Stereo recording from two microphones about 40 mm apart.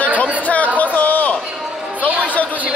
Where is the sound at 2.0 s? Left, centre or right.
Left.